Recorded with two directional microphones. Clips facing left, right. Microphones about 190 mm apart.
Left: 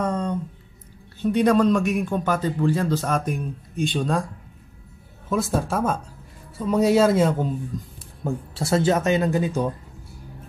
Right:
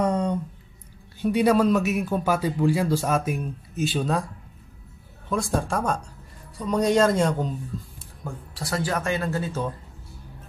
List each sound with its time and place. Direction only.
0.0 s a sound: 15° right (ahead or behind)
1.2 s speech: 10° right (ahead or behind)
5.3 s speech: 5° left (ahead or behind)
8.2 s speech: 25° left (ahead or behind)